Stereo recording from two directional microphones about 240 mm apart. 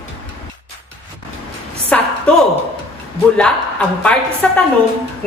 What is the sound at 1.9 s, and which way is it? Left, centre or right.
Speech, centre.